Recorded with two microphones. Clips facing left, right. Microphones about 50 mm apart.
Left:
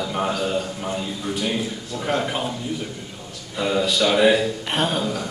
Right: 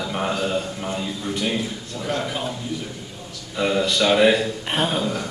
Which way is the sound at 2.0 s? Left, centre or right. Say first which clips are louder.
Left 2 dB; left.